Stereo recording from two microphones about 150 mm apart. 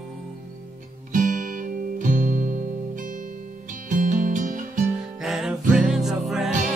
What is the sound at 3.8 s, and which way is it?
Music, 60° right (ahead or behind).